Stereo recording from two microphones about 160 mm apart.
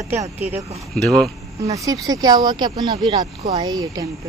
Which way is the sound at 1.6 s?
20° right (ahead or behind).